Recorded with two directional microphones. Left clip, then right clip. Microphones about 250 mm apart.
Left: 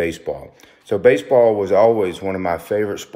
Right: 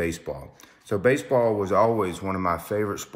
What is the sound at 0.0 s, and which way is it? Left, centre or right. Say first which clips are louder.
A man's voice: left 7 dB; centre.